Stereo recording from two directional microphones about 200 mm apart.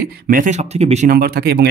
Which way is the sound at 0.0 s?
45° right (ahead or behind).